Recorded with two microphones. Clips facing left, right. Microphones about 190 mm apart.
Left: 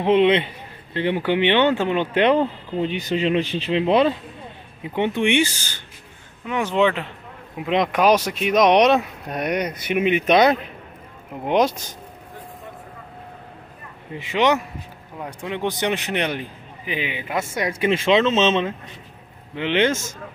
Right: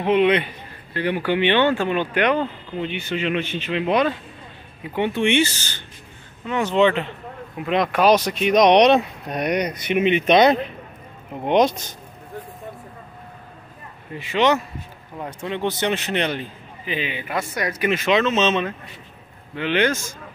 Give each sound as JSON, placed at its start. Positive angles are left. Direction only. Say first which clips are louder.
{"t": 0.0, "sound": "a man's voice", "louder": "left 1 dB", "side_deg": 25}
{"t": 7.5, "sound": "a man's voice", "louder": "even", "side_deg": 20}
{"t": 14.1, "sound": "a man's voice", "louder": "even", "side_deg": 20}